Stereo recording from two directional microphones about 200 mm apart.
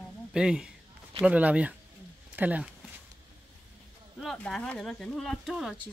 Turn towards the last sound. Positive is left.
turn(degrees=0)  # may be behind; listen again after turning